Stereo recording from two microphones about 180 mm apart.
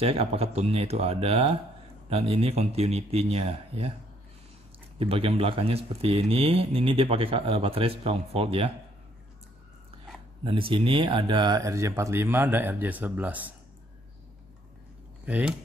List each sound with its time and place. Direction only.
0.0 s speech: 30° right (ahead or behind)
4.9 s speech: 30° right (ahead or behind)
10.4 s speech: 30° right (ahead or behind); by 13.5 s 10° right (ahead or behind)
15.2 s speech: 5° right (ahead or behind)